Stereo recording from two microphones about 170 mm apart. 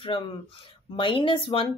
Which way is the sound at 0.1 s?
30° left (ahead or behind).